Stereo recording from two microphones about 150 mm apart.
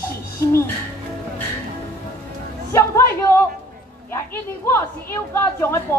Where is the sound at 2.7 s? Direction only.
15° left (ahead or behind).